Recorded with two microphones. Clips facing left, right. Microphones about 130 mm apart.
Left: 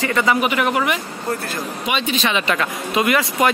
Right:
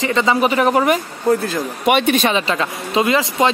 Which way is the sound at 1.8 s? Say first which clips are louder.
Right 7 dB; 60° right (ahead or behind).